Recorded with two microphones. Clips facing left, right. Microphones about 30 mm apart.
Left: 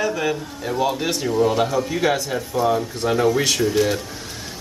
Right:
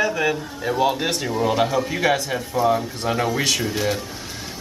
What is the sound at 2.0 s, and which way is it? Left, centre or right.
Speech, centre.